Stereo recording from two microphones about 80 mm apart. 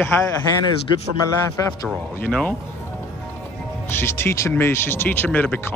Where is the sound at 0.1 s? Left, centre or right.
Left.